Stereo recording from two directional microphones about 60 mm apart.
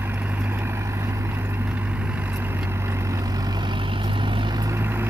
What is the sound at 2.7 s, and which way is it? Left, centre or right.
Vehicle, right.